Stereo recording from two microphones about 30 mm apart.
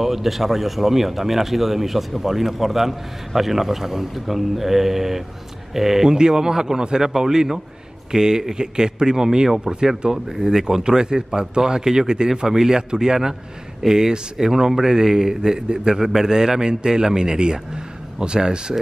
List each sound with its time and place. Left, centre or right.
0.0 s speech: centre
6.0 s speech: right